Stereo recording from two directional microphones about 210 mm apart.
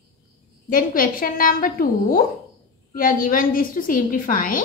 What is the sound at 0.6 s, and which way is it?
A woman's voice, 40° left (ahead or behind).